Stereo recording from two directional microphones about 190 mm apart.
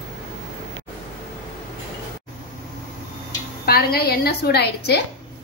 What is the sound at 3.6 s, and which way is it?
A woman's voice, 55° left (ahead or behind).